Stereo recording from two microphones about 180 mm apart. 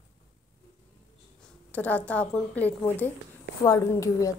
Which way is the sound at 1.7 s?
10° left (ahead or behind).